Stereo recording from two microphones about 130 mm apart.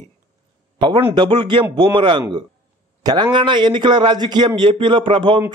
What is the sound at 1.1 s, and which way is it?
A man's voice, 35° right (ahead or behind).